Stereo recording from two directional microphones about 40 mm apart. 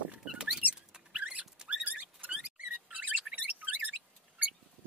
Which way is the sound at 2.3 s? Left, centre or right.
Right.